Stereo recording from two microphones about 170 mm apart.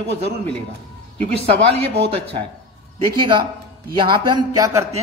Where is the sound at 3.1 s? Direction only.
30° right (ahead or behind).